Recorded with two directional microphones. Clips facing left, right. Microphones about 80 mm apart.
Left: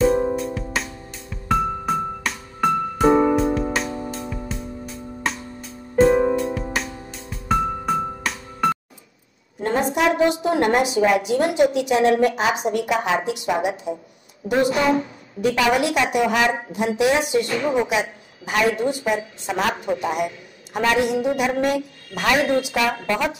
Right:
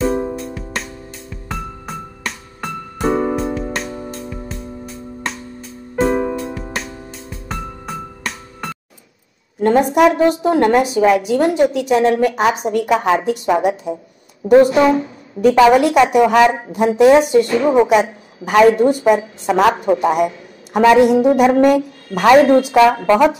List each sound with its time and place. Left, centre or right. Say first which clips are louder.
0.0 s music: left 1 dB; centre
9.6 s a woman's voice: right 8 dB; right
17.8 s a woman's voice: right 9 dB; right